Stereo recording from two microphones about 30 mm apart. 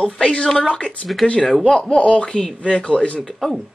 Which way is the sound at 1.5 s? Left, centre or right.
Left.